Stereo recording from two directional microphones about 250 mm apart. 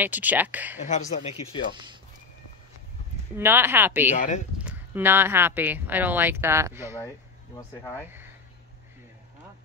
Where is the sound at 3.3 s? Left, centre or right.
Centre.